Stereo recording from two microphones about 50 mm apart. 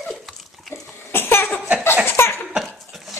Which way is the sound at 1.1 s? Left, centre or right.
Left.